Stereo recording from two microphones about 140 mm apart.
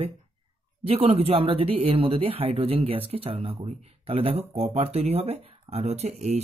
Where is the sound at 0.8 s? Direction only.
45° right (ahead or behind).